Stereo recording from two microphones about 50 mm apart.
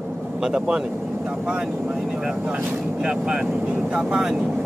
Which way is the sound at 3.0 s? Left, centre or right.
Right.